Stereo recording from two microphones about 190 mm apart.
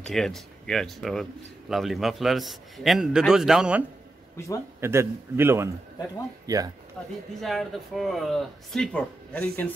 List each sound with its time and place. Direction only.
0.0 s a man's voice: centre (ahead or behind); by 6.7 s 20° right (ahead or behind)
7.3 s speech: centre (ahead or behind)